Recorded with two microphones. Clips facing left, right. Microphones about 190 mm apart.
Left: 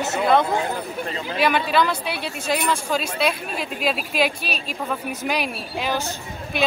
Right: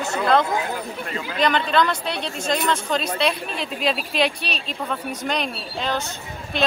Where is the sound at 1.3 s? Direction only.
10° left (ahead or behind).